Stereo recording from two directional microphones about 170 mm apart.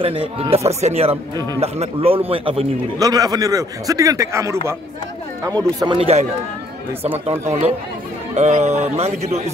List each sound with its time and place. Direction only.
0.0 s a man's voice: 35° right (ahead or behind); by 4.6 s 15° right (ahead or behind)
5.5 s speech: 5° left (ahead or behind)
5.9 s speech: 35° right (ahead or behind)
8.4 s speech: 45° right (ahead or behind)